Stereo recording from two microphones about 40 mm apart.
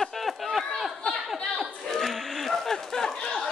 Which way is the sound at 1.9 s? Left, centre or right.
Centre.